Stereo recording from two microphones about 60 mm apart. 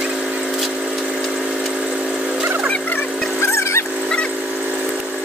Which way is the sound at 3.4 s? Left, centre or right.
Left.